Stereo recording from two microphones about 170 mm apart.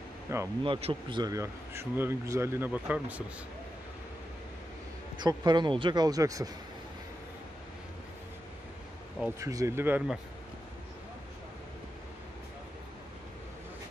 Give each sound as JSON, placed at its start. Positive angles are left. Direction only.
{"t": 0.3, "sound": "speech", "side_deg": -15}
{"t": 0.7, "sound": "speech", "side_deg": -35}
{"t": 1.2, "sound": "speech", "side_deg": -15}
{"t": 5.2, "sound": "speech", "side_deg": -25}
{"t": 9.4, "sound": "speech", "side_deg": -20}